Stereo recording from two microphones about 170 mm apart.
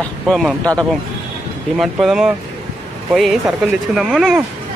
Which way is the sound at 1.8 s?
Centre (ahead or behind).